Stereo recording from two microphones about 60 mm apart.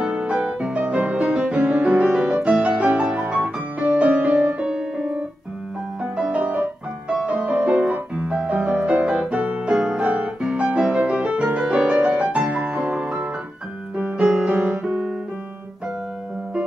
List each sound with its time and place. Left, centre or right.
0.0 s music: centre
7.9 s piano: centre
10.4 s music: centre
13.0 s piano: centre
13.9 s piano: right